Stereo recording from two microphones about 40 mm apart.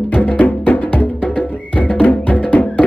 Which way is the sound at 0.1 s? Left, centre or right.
Left.